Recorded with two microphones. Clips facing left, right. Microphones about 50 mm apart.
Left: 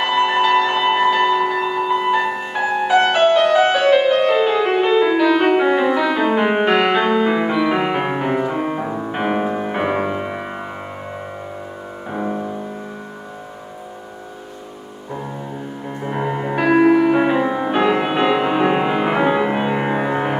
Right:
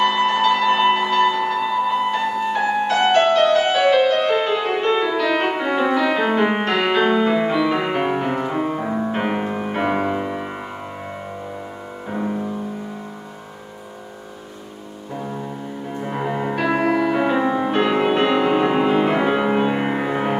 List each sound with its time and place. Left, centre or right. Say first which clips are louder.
0.0 s music: left 1 dB; centre
5.3 s music: left 5 dB; centre
5.6 s music: left 3 dB; centre
8.8 s music: right 1 dB; centre
9.1 s music: left 2 dB; centre
12.1 s music: left 1 dB; centre
16.0 s music: left 1 dB; centre